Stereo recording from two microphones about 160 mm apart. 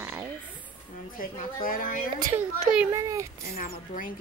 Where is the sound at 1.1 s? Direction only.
60° left (ahead or behind).